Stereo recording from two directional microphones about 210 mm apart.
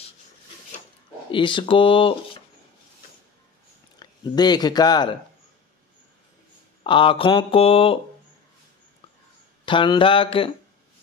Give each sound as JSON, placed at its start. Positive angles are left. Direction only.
{"t": 1.3, "sound": "speech", "side_deg": 25}
{"t": 4.0, "sound": "speech", "side_deg": 20}
{"t": 6.8, "sound": "speech", "side_deg": 25}
{"t": 9.7, "sound": "speech", "side_deg": 25}